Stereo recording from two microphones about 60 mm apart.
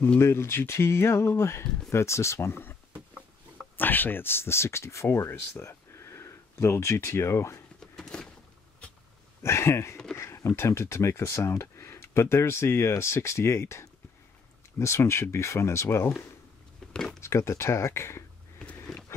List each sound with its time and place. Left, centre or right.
0.2 s speech: left
3.7 s speech: left
5.6 s a sound: left
7.8 s power windows: centre
9.4 s speech: left
16.9 s speech: centre
17.2 s speech: left